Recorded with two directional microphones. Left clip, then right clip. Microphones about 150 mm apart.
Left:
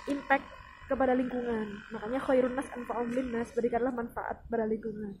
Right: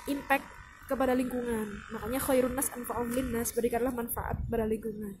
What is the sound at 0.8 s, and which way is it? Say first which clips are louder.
A woman's voice: left 1 dB; 20° right (ahead or behind).